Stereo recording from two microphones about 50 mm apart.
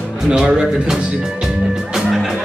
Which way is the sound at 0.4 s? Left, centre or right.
Centre.